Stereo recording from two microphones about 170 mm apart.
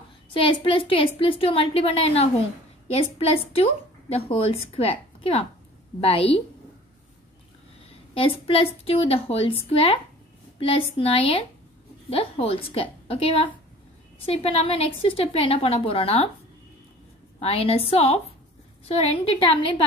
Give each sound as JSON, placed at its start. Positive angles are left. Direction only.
{"t": 0.3, "sound": "a woman's voice", "side_deg": 30}
{"t": 4.7, "sound": "a woman's voice", "side_deg": 35}
{"t": 8.1, "sound": "a woman's voice", "side_deg": 35}
{"t": 17.4, "sound": "a woman's voice", "side_deg": 35}